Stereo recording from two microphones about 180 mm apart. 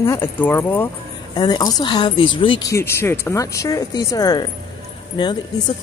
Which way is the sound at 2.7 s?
15° left (ahead or behind).